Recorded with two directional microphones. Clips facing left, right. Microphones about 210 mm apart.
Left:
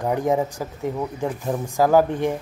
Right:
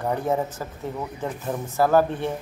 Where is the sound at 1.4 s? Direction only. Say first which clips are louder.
Left 2 dB; 15° left (ahead or behind).